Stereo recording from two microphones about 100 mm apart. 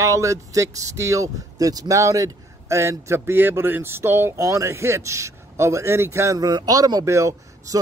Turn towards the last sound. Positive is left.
turn(degrees=-30)  # may be behind; listen again after turning